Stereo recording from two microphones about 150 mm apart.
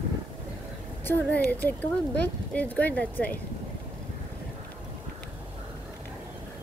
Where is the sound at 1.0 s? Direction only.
10° left (ahead or behind).